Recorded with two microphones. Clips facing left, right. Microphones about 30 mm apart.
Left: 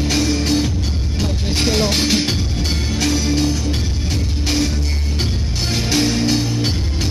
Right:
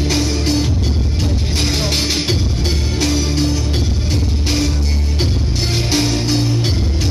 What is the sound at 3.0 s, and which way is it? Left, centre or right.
Music, right.